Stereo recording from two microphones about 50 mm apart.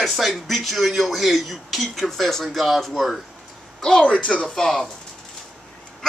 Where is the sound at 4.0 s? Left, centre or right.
Left.